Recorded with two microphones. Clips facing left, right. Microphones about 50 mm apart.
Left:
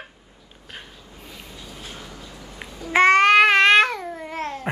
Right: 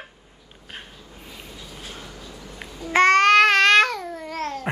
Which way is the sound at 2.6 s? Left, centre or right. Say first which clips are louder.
Left 1 dB; centre.